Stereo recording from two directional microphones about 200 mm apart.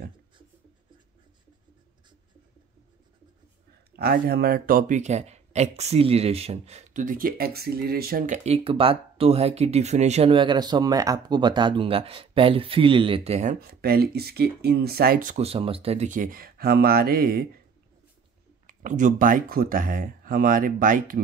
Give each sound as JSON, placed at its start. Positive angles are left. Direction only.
{"t": 3.9, "sound": "speech", "side_deg": -50}
{"t": 8.5, "sound": "speech", "side_deg": -30}
{"t": 18.7, "sound": "speech", "side_deg": -40}